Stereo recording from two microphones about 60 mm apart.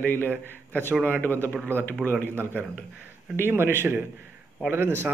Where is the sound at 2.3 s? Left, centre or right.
Right.